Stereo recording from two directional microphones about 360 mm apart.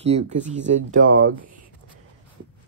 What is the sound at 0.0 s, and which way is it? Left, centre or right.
Speech, centre.